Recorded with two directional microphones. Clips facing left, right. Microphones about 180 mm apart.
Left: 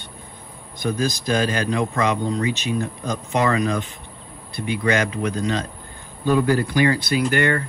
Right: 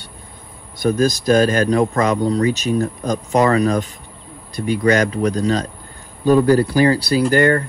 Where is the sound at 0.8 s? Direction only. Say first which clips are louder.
Right 7 dB; 45° right (ahead or behind).